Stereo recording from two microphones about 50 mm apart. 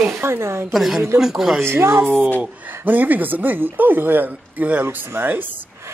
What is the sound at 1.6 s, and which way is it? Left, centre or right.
Speech, right.